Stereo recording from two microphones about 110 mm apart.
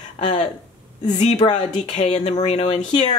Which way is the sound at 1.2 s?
90° left.